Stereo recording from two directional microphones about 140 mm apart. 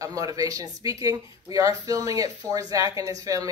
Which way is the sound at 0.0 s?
25° right (ahead or behind).